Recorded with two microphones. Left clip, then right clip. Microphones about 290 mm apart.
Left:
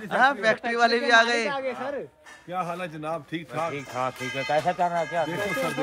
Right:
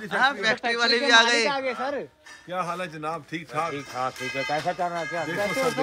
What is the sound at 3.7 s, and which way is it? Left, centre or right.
Speech, left.